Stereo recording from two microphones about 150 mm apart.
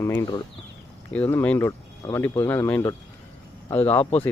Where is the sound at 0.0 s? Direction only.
20° left (ahead or behind).